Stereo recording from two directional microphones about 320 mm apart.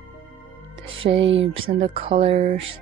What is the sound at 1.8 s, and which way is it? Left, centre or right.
Speech, centre.